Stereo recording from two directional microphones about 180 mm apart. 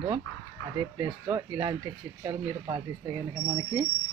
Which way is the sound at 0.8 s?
25° right (ahead or behind).